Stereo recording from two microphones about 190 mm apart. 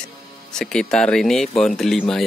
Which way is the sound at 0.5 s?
5° left (ahead or behind).